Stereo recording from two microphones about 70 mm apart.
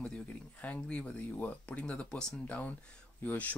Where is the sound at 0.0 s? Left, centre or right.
Centre.